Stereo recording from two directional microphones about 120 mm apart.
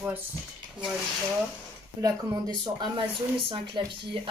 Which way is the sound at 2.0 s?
35° right (ahead or behind).